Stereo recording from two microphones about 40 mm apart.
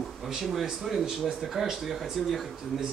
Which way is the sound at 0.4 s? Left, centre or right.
Centre.